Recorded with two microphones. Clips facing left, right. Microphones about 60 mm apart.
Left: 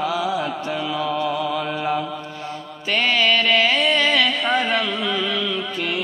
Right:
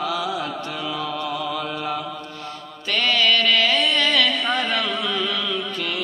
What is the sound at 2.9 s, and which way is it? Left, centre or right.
Carnatic music, centre.